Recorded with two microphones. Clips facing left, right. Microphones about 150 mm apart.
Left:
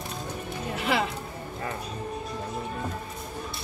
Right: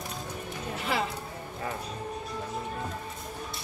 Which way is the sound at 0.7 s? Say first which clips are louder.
Left 4 dB; 80° left.